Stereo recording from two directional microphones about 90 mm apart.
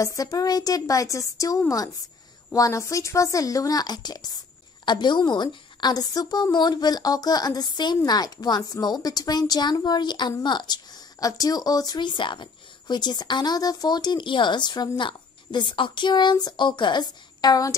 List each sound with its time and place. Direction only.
0.0 s a woman's voice: 40° left (ahead or behind)